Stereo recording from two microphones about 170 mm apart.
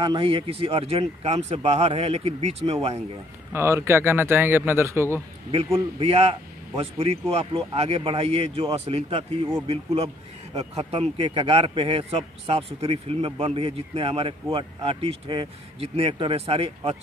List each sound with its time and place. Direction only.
0.0 s a man's voice: 30° right (ahead or behind)
3.5 s a man's voice: 15° right (ahead or behind)
5.9 s a man's voice: 35° right (ahead or behind)